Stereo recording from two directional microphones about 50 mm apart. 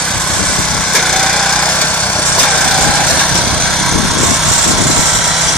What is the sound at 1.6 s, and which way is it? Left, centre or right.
Lawn mower, left.